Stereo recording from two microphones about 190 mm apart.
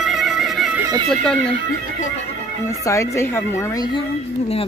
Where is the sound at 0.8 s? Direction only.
20° right (ahead or behind).